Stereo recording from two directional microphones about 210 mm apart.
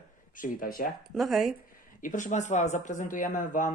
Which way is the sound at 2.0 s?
35° left (ahead or behind).